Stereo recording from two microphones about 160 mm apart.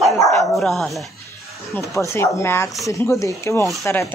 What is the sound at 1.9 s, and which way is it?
Speech, 20° left (ahead or behind).